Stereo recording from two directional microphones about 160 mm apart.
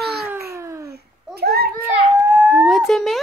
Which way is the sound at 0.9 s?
75° right (ahead or behind).